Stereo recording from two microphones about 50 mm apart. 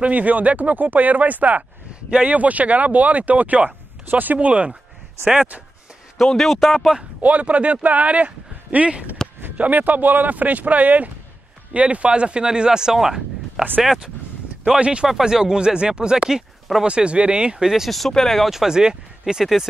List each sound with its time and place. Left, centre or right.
0.0 s speech: right
5.2 s speech: centre
6.1 s speech: centre
7.2 s speech: right; by 13.7 s centre
14.8 s speech: centre
15.0 s speech: centre
18.5 s speech: centre